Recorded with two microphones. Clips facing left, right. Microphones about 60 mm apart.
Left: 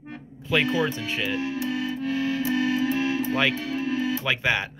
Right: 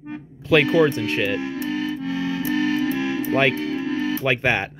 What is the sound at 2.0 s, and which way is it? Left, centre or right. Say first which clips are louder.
Music: right 1 dB; right.